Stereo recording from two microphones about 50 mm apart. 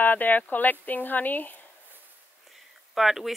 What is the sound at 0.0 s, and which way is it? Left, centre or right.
Speech, left.